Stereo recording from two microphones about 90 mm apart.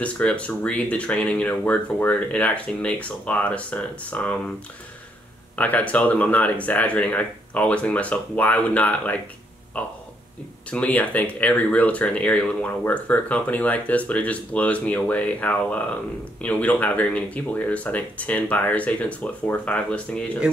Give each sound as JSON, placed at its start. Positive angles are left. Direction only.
{"t": 0.0, "sound": "speech", "side_deg": 15}
{"t": 5.6, "sound": "speech", "side_deg": 15}